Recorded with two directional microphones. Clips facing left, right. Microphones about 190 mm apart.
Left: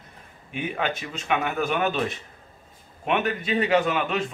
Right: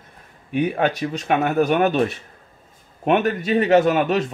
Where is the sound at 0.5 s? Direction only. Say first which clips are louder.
Right 8 dB; 45° right (ahead or behind).